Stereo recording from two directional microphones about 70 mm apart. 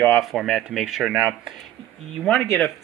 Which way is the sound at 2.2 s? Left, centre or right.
Centre.